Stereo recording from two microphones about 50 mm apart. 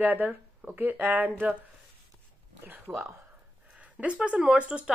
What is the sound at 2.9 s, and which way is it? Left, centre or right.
Speech, right.